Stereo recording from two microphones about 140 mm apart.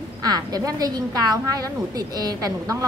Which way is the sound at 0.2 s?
25° right (ahead or behind).